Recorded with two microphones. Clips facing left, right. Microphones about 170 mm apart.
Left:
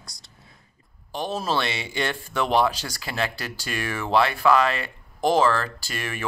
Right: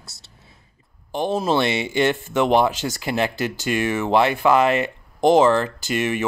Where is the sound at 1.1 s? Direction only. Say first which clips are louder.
Right 6 dB; 25° right (ahead or behind).